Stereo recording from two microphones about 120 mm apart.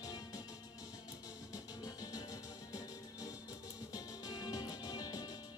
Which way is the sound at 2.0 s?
35° left (ahead or behind).